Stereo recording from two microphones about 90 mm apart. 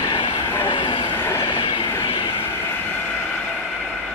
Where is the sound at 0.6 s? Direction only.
80° left.